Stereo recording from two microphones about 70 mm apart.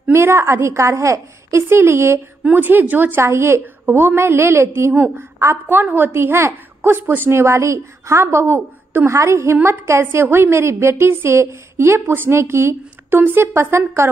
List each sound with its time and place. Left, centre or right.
0.1 s a woman's voice: right
2.4 s a woman's voice: right
3.2 s a woman's voice: right